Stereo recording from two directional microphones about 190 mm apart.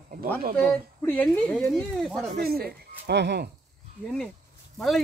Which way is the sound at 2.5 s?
55° right (ahead or behind).